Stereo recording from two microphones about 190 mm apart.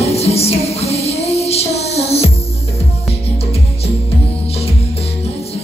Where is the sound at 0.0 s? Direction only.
35° left (ahead or behind).